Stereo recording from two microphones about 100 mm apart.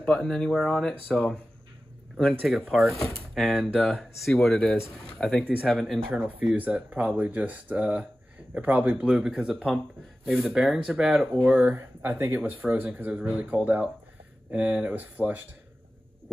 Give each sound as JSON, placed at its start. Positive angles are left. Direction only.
{"t": 0.0, "sound": "speech", "side_deg": 5}
{"t": 2.4, "sound": "speech", "side_deg": 0}
{"t": 6.5, "sound": "speech", "side_deg": -15}
{"t": 11.4, "sound": "speech", "side_deg": -20}